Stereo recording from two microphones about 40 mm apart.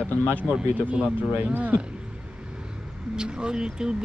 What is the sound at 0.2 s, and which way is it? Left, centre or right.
Speech, left.